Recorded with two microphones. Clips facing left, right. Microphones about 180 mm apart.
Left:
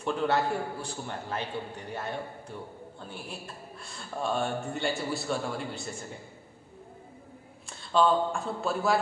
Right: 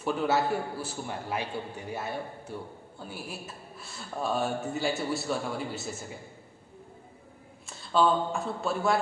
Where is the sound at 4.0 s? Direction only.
Centre (ahead or behind).